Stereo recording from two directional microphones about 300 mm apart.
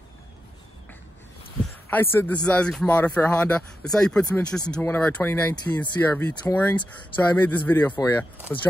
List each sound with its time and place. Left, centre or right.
1.9 s speech: centre